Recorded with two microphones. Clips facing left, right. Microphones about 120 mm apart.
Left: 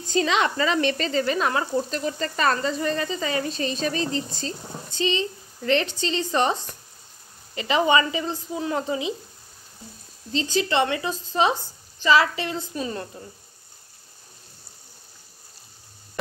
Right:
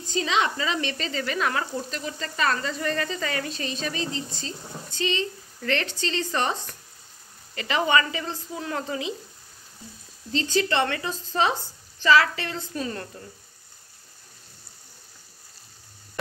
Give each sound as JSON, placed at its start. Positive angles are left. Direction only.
{"t": 0.1, "sound": "speech", "side_deg": 55}
{"t": 1.1, "sound": "speech", "side_deg": 30}
{"t": 1.9, "sound": "frying", "side_deg": 40}
{"t": 2.6, "sound": "speech", "side_deg": 20}
{"t": 4.9, "sound": "speech", "side_deg": 20}
{"t": 10.3, "sound": "speech", "side_deg": 20}